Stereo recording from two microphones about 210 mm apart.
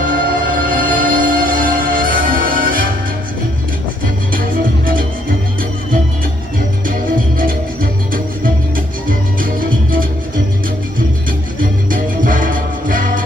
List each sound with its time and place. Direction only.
0.0 s music: 40° right (ahead or behind)
4.3 s music: 40° right (ahead or behind)
6.9 s music: 45° right (ahead or behind)
9.4 s music: 40° right (ahead or behind)
11.9 s music: 40° right (ahead or behind)